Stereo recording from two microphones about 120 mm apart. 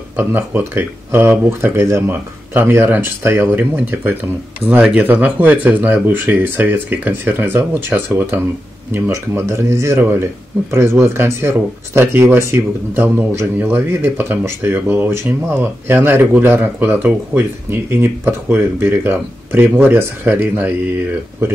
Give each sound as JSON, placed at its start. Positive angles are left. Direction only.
{"t": 0.1, "sound": "speech", "side_deg": -15}